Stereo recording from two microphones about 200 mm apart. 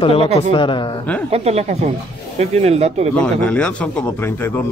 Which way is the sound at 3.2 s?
5° left (ahead or behind).